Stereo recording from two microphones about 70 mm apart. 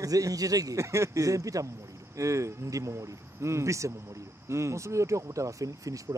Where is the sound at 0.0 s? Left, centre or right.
Right.